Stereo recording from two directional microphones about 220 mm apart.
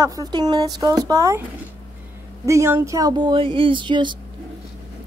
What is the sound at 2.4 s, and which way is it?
A woman's voice, 15° right (ahead or behind).